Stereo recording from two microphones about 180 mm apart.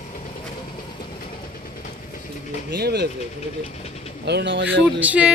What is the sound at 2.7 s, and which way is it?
Speech, 65° right (ahead or behind).